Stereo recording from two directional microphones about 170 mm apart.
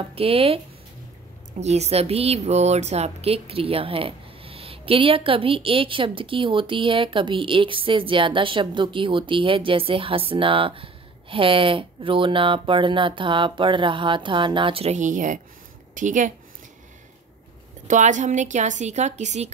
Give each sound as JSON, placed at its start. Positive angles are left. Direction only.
{"t": 0.1, "sound": "a woman's voice", "side_deg": -35}
{"t": 1.6, "sound": "a woman's voice", "side_deg": -40}
{"t": 17.8, "sound": "a woman's voice", "side_deg": -45}